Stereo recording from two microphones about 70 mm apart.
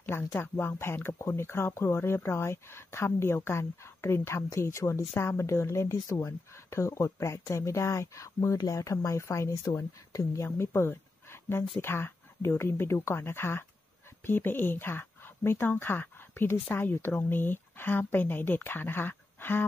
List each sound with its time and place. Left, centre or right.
0.1 s speech: left
8.9 s speech: left
10.4 s speech: left